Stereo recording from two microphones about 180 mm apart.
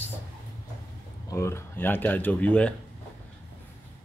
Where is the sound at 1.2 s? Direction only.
15° left (ahead or behind).